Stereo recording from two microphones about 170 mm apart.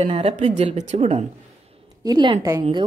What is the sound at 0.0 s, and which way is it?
Speech, 35° right (ahead or behind).